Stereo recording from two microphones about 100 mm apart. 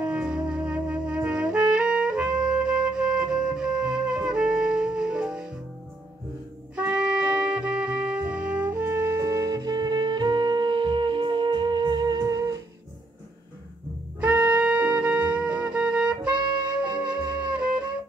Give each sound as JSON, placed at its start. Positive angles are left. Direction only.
{"t": 0.0, "sound": "music", "side_deg": -10}
{"t": 0.5, "sound": "trumpet", "side_deg": -10}
{"t": 6.7, "sound": "music", "side_deg": -10}
{"t": 8.6, "sound": "music", "side_deg": -25}
{"t": 14.2, "sound": "wind instrument", "side_deg": -10}